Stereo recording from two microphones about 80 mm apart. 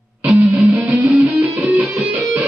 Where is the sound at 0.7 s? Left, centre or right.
Right.